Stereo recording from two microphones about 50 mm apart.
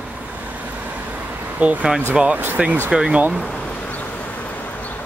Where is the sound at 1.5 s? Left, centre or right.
Right.